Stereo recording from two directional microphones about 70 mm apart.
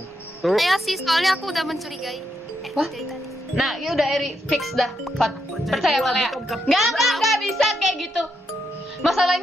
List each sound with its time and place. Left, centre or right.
0.4 s speech: centre
3.5 s speech: centre